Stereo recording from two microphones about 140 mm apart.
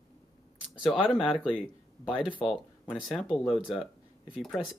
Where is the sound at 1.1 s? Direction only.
40° left (ahead or behind).